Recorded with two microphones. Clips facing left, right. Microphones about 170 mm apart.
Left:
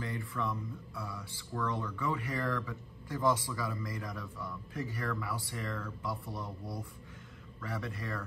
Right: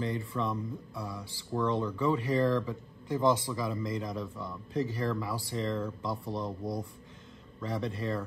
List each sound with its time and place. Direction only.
0.0 s speech: 25° right (ahead or behind)